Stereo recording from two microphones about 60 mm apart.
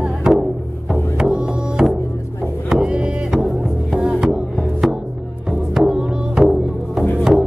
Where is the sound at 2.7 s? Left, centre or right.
Centre.